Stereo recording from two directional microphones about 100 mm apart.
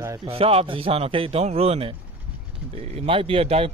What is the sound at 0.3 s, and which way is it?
A man's voice, 80° right.